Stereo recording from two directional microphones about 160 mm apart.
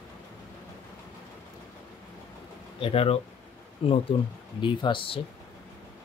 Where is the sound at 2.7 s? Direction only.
35° left (ahead or behind).